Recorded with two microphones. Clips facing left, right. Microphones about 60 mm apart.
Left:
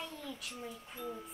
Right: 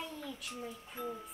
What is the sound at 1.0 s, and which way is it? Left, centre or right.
Speech, right.